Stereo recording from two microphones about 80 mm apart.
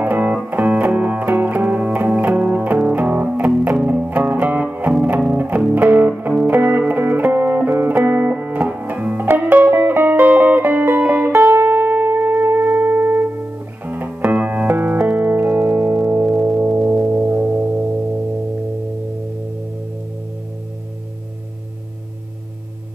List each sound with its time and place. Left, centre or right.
0.0 s music: right